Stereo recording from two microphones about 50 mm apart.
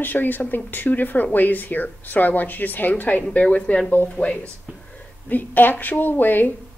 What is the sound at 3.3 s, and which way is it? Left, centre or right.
A woman's voice, left.